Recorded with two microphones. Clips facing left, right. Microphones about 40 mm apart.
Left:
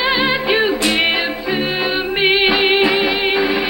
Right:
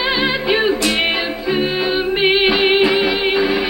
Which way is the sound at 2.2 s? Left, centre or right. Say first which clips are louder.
Left 1 dB; centre.